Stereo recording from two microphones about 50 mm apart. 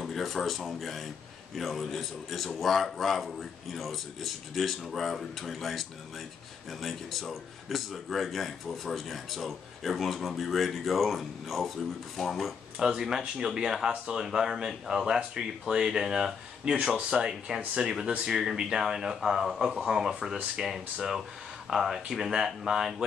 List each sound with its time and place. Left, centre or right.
0.0 s speech: centre
12.7 s speech: centre